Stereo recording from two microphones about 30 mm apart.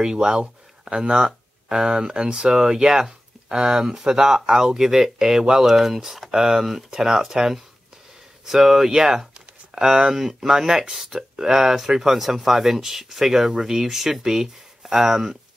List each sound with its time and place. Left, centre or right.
0.0 s speech: right